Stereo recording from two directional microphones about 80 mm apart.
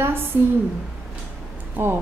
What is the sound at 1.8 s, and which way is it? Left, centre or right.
Speech, right.